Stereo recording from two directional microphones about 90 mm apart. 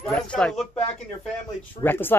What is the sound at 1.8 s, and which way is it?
Speech, 25° left (ahead or behind).